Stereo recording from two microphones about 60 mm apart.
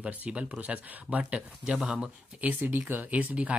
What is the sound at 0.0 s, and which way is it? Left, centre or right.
Speech, centre.